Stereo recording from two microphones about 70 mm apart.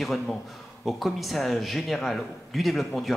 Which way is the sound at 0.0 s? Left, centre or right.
Centre.